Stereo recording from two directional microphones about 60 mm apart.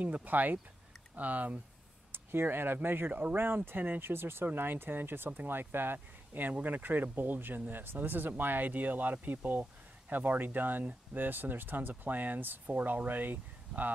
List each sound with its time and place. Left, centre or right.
0.0 s speech: right
2.1 s speech: right